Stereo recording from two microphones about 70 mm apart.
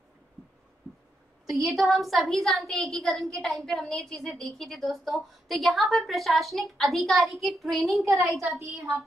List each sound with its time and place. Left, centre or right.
1.7 s a woman's voice: centre
8.5 s speech: right